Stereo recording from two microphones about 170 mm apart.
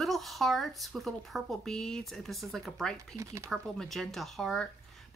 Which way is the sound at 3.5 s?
Centre (ahead or behind).